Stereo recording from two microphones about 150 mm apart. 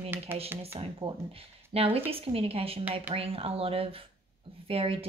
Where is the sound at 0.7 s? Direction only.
40° right (ahead or behind).